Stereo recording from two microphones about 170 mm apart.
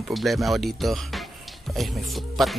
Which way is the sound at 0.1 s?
Centre (ahead or behind).